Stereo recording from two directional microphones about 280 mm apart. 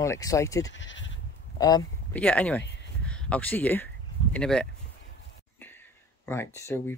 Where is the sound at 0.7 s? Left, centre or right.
Left.